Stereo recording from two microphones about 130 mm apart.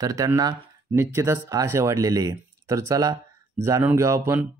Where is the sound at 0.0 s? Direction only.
25° right (ahead or behind).